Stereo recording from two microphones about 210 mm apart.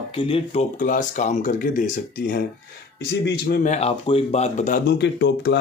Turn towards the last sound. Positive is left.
turn(degrees=55)  # may be behind; listen again after turning